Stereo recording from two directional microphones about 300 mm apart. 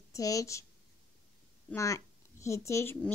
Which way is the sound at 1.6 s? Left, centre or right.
Centre.